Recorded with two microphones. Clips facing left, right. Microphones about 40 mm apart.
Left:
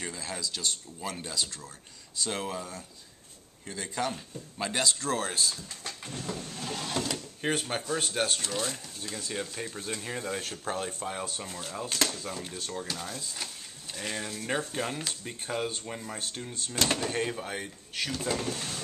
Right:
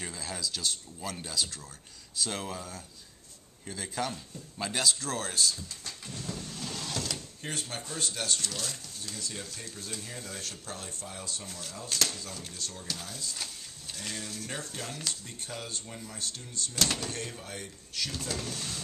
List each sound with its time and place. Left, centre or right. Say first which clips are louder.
0.0 s speech: left 1 dB; centre
5.9 s a sound: left 4 dB; left
7.4 s speech: left 8 dB; left
8.4 s speech: left 4 dB; centre
11.4 s speech: left 4 dB; left
16.7 s speech: left 2 dB; centre
17.0 s speech: left 7 dB; left
18.2 s speech: left 5 dB; centre